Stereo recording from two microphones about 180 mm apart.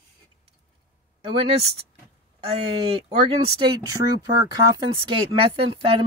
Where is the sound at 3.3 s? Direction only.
25° right (ahead or behind).